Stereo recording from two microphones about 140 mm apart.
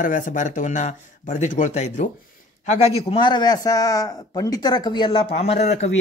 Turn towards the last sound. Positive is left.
turn(degrees=50)  # may be behind; listen again after turning